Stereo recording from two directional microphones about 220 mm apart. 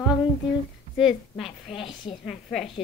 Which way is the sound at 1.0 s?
Centre (ahead or behind).